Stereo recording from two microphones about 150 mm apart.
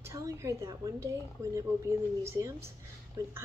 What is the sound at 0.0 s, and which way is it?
A woman's voice, 20° right (ahead or behind).